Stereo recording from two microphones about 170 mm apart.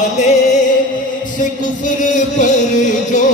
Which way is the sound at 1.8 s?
45° left (ahead or behind).